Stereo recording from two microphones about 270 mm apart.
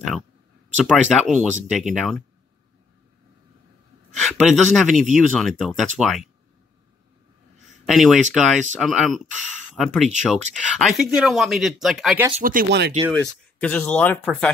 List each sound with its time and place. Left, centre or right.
0.8 s speech: centre
4.2 s speech: centre
7.8 s speech: centre
12.4 s speech: right
13.1 s speech: centre